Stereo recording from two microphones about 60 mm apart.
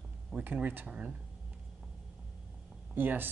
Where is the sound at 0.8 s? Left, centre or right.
Centre.